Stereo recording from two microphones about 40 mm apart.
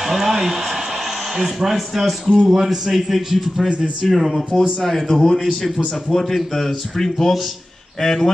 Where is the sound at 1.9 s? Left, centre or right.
Centre.